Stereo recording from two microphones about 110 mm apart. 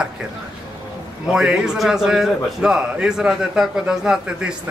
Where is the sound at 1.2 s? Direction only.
10° right (ahead or behind).